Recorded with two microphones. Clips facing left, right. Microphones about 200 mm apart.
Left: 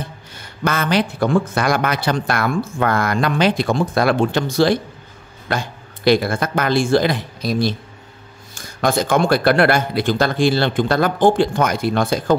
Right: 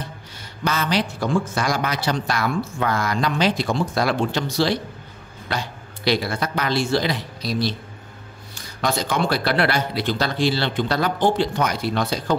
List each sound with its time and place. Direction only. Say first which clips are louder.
0.7 s speech: left 4 dB; 55° left (ahead or behind)